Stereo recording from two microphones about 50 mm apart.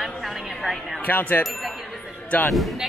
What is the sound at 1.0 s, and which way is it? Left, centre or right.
Speech, left.